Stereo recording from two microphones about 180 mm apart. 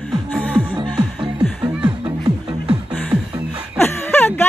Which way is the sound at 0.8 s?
25° right (ahead or behind).